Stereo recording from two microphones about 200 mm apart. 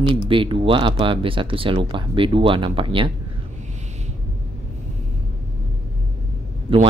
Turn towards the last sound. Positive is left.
turn(degrees=-25)  # may be behind; listen again after turning